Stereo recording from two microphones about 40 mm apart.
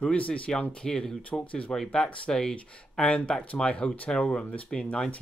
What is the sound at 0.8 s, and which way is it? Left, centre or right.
Speech, centre.